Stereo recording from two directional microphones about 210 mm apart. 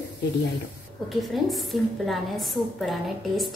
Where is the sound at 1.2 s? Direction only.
Centre (ahead or behind).